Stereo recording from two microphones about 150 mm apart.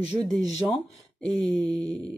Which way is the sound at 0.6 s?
15° right (ahead or behind).